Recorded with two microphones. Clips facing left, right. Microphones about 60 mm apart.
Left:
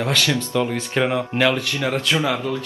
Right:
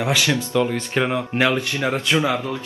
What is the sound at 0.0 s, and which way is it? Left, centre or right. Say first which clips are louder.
Speech: right 1 dB; centre.